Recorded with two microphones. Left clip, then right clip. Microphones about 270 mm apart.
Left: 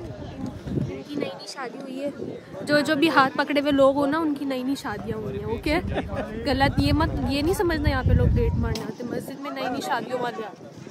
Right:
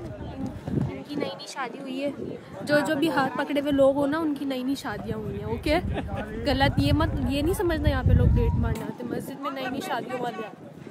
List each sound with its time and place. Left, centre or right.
1.6 s a woman's voice: right
2.6 s speech: centre